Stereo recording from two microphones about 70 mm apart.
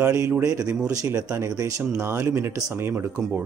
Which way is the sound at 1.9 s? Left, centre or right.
Right.